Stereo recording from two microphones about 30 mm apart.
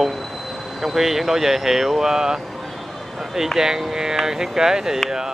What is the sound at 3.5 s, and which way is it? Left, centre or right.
Speech, centre.